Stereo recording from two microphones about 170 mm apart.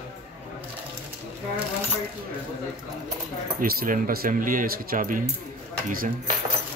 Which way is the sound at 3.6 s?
60° right (ahead or behind).